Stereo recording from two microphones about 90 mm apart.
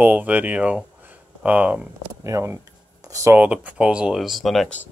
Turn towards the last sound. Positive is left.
turn(degrees=0)  # may be behind; listen again after turning